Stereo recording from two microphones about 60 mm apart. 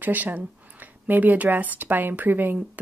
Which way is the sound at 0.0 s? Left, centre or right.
Right.